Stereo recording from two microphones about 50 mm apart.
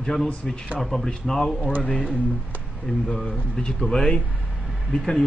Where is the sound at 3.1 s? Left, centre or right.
Centre.